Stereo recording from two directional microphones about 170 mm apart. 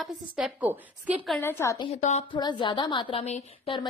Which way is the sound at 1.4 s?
15° left (ahead or behind).